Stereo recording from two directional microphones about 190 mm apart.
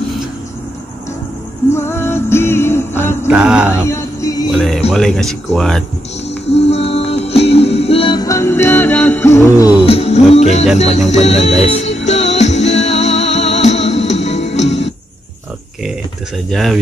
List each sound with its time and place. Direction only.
1.7 s music: 15° left (ahead or behind)
3.3 s speech: 5° right (ahead or behind)
3.7 s a sound: 15° left (ahead or behind)
4.5 s music: 5° left (ahead or behind)
4.9 s speech: centre (ahead or behind)
6.5 s music: 30° left (ahead or behind); by 9.7 s 15° left (ahead or behind)
9.8 s music: 30° left (ahead or behind)
16.4 s speech: centre (ahead or behind)